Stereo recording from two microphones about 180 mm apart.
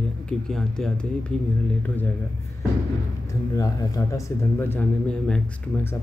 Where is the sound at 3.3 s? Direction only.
20° left (ahead or behind).